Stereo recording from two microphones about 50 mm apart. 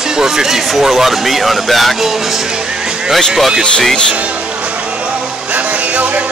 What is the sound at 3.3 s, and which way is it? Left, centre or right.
Speech, centre.